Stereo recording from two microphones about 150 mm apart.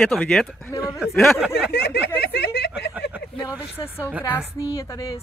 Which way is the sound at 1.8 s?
90° left.